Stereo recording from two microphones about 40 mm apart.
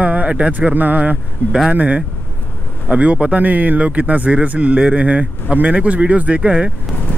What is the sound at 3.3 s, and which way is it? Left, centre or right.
Speech, right.